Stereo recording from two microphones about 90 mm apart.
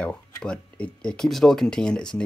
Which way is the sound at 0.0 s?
10° left (ahead or behind).